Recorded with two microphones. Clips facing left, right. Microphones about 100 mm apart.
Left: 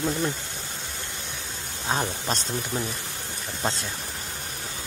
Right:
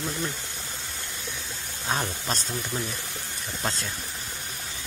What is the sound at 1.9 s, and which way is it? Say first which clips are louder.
Speech: left 2 dB; 20° left (ahead or behind).